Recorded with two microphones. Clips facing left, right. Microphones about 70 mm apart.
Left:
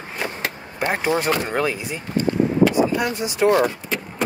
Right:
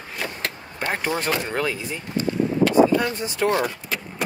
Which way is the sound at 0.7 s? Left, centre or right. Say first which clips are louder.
Left 4 dB; centre.